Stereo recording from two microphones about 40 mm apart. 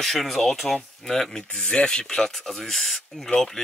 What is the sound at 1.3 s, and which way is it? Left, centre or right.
Speech, left.